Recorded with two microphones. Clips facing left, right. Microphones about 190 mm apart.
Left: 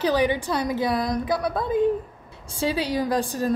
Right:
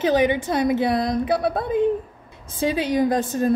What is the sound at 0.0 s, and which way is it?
A woman's voice, 20° right (ahead or behind).